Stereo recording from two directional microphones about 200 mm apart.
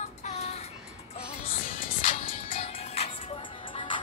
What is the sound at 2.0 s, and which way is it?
Music, 35° left (ahead or behind).